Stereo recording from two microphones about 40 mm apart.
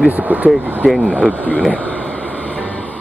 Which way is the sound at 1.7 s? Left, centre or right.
Left.